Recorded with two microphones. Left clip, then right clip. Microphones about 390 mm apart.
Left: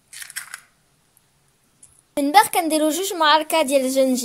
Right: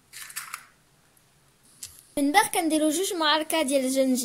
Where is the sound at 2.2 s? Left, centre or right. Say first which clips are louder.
Left 7 dB; centre.